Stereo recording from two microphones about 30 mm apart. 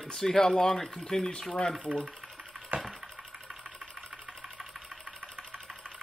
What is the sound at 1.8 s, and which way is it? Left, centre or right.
Speech, left.